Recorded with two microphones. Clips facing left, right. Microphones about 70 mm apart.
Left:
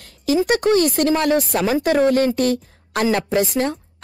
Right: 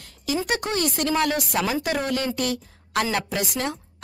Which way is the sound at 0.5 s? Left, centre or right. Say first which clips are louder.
Left 10 dB; left.